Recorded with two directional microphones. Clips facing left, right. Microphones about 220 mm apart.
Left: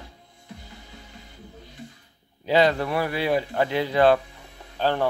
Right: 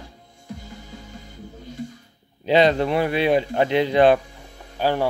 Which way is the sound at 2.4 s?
20° right (ahead or behind).